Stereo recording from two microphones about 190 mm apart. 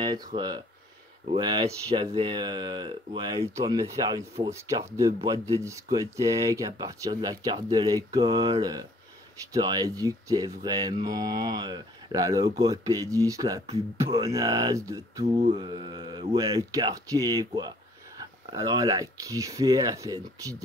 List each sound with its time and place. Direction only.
0.0 s speech: 20° right (ahead or behind)